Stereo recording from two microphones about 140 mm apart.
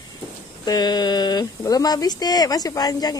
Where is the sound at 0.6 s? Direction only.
30° left (ahead or behind).